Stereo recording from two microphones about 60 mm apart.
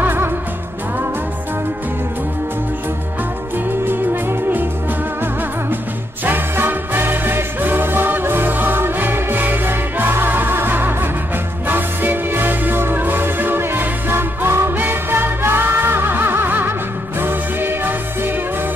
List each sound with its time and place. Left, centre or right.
0.0 s music: right
3.8 s music: right
6.2 s music: right